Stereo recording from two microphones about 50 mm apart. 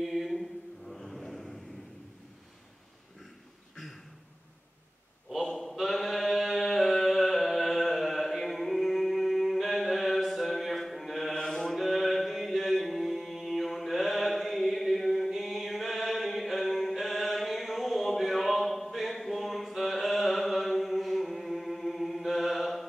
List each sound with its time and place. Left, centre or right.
0.0 s chant: centre
3.7 s a sound: centre
5.5 s chant: centre